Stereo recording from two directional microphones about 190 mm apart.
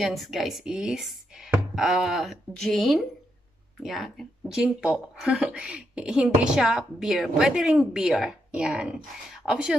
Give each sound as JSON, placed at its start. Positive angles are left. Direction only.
{"t": 0.0, "sound": "speech", "side_deg": 0}